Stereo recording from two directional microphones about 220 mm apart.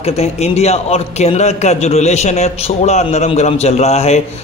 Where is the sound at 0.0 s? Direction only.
30° left (ahead or behind).